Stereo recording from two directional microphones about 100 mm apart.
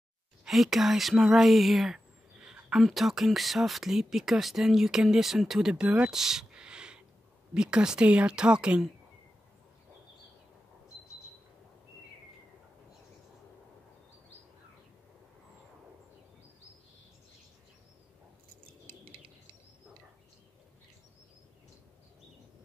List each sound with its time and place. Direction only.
0.5 s speech: centre (ahead or behind)
6.0 s a sound: 5° right (ahead or behind)
7.5 s speech: 10° right (ahead or behind)
19.0 s bird: 65° right (ahead or behind)